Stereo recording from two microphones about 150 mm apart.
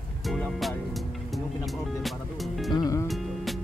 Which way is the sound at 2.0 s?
Centre (ahead or behind).